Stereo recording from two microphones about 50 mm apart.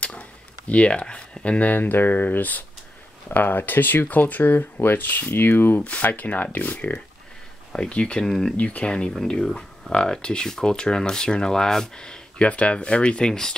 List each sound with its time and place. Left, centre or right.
0.0 s a sound: left
1.7 s speech: left
5.8 s speech: left
7.9 s speech: left
8.5 s speech: left
13.3 s speech: centre